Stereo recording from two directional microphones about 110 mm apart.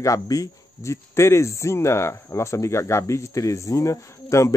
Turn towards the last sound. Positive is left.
turn(degrees=30)  # may be behind; listen again after turning